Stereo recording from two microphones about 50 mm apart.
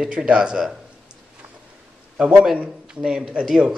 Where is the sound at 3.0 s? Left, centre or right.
Centre.